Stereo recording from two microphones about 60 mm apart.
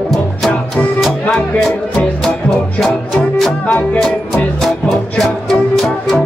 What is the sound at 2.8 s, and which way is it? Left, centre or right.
Music, centre.